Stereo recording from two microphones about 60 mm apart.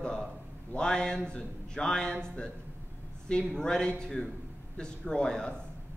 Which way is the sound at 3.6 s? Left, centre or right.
Centre.